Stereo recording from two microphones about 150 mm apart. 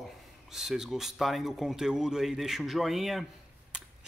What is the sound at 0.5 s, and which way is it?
A man's voice, 5° right (ahead or behind).